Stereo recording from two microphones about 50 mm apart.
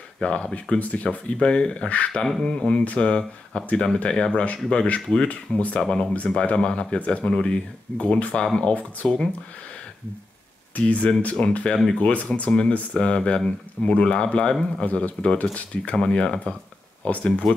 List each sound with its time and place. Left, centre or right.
0.2 s speech: centre
6.1 s speech: left
10.8 s speech: left
11.6 s speech: centre
12.0 s speech: left